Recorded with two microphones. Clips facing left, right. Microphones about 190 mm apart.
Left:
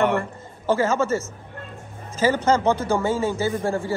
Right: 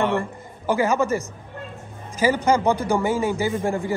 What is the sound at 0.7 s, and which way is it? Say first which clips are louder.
A man's voice: even; 15° right (ahead or behind).